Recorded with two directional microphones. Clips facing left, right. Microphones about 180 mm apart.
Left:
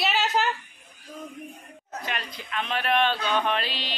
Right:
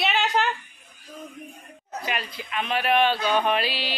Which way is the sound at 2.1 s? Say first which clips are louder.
Right 3 dB; 5° right (ahead or behind).